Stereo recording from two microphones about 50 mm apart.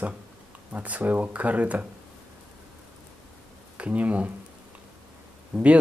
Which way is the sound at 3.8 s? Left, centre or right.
Right.